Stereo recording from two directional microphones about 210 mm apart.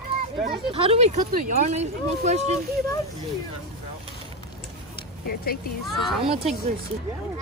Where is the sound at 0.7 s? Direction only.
30° right (ahead or behind).